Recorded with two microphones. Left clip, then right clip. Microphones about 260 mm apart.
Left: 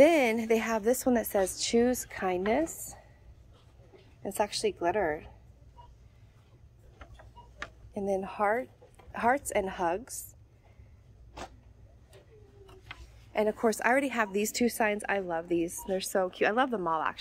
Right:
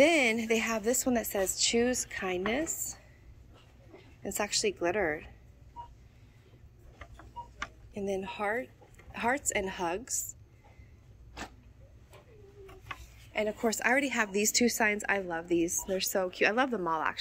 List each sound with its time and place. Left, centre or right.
0.0 s a woman's voice: centre
4.2 s a woman's voice: centre
7.9 s a woman's voice: centre
13.3 s a woman's voice: centre